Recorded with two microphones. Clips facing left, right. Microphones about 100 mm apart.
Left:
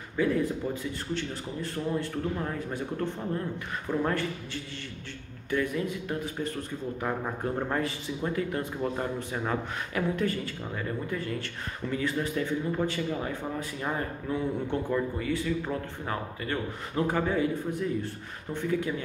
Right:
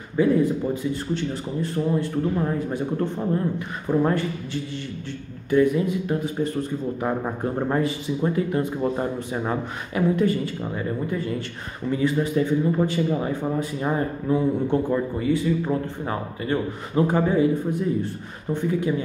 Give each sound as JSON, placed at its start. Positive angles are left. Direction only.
{"t": 0.1, "sound": "a man's voice", "side_deg": -20}
{"t": 5.5, "sound": "a man's voice", "side_deg": -20}